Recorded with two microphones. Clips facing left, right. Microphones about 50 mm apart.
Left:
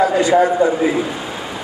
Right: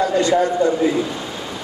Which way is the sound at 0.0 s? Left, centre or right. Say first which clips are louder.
Left 3 dB; centre.